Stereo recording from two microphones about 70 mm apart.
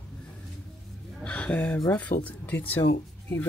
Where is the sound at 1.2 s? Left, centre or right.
Centre.